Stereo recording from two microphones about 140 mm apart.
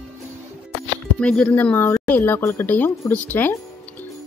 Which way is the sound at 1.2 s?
10° left (ahead or behind).